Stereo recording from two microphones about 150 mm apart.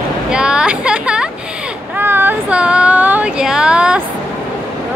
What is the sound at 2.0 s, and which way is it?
Child singing, 15° right (ahead or behind).